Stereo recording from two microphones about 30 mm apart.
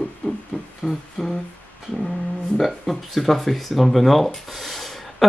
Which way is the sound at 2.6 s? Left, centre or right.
Centre.